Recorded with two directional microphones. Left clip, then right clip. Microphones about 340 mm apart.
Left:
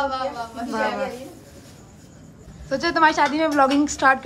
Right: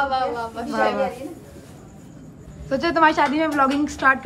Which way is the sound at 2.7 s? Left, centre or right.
Centre.